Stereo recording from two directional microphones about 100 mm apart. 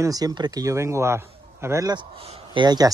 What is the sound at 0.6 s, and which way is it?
Speech, 30° right (ahead or behind).